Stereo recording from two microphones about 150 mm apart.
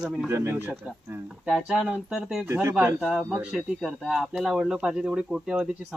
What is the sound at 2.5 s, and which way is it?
Speech, 15° right (ahead or behind).